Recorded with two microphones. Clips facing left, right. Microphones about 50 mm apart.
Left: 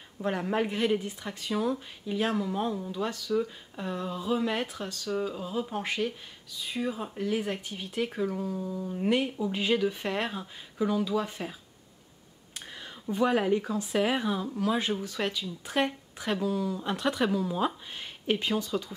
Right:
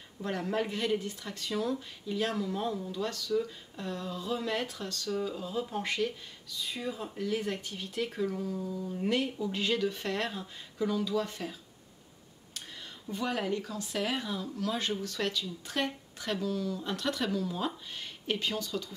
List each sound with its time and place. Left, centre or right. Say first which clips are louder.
0.2 s speech: left 4 dB; centre
8.5 s speech: left 2 dB; left
13.1 s speech: left 7 dB; left